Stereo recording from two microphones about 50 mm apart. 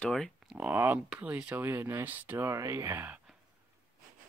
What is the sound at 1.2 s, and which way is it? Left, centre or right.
Speech, right.